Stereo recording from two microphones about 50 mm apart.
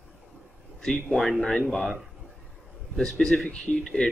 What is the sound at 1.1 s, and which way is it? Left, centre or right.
Speech, centre.